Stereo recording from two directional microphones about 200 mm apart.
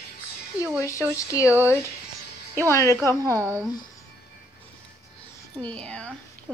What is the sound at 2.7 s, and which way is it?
Speech, 15° left (ahead or behind).